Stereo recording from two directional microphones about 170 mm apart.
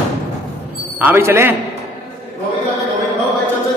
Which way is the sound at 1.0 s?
15° right (ahead or behind).